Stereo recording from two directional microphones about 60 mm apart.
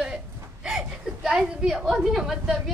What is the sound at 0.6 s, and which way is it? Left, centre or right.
A woman's voice, centre.